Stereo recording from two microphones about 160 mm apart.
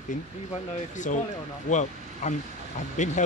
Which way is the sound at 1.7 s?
50° left (ahead or behind).